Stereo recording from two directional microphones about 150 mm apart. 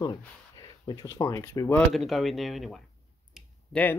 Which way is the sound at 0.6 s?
25° left (ahead or behind).